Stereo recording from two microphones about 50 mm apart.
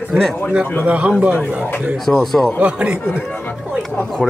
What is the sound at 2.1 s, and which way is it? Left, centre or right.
Speech, left.